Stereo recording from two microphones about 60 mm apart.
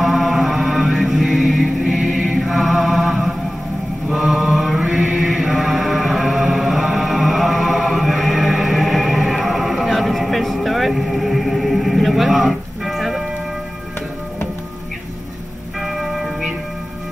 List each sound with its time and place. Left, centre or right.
0.0 s music: centre
4.1 s chant: centre
15.8 s music: centre